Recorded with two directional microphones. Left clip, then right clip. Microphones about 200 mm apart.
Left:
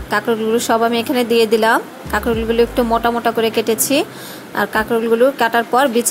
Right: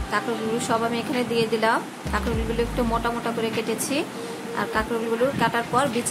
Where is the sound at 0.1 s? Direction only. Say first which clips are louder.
Left 9 dB; 35° left (ahead or behind).